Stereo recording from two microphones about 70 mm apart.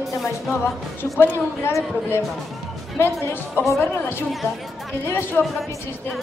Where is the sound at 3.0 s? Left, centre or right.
Left.